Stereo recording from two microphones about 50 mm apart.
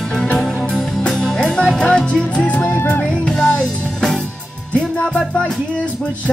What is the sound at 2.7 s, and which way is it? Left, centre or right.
Music, left.